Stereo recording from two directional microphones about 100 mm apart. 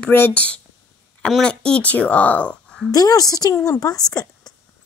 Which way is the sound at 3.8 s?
40° left (ahead or behind).